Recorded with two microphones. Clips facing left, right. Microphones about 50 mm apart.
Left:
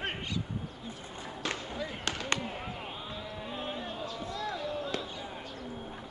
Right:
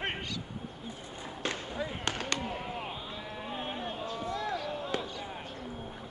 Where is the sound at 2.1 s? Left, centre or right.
Right.